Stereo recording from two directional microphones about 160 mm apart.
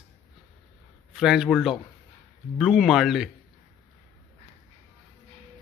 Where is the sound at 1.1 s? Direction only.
5° right (ahead or behind).